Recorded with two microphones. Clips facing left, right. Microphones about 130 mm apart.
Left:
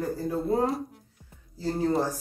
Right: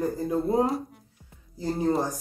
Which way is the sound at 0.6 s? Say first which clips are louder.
Right 2 dB; centre (ahead or behind).